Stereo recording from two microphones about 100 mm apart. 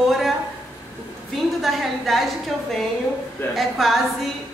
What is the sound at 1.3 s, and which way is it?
Speech, centre (ahead or behind).